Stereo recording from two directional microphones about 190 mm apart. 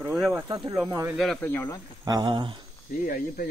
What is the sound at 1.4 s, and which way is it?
Speech, 10° left (ahead or behind).